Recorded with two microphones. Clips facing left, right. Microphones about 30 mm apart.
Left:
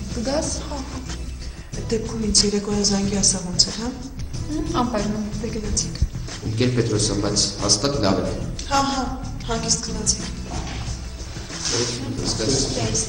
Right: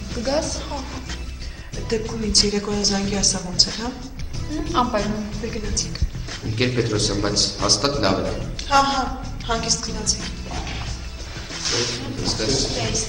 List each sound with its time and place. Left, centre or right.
0.1 s a man's voice: right
1.9 s a man's voice: centre
11.6 s a man's voice: centre